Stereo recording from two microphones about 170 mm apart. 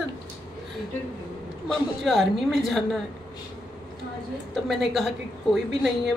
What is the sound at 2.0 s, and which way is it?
A woman's voice, centre (ahead or behind).